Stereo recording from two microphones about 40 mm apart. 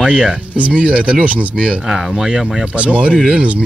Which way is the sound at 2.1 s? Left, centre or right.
Centre.